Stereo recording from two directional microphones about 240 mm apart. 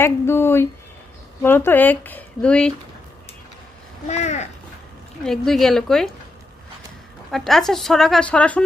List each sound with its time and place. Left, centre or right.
0.0 s speech: centre
4.1 s speech: left
5.2 s a woman's voice: centre
7.2 s a woman's voice: centre